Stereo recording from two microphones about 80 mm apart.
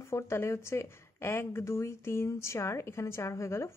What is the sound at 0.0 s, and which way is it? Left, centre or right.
Speech, left.